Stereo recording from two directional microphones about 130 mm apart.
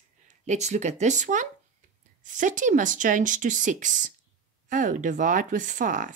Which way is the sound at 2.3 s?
80° right.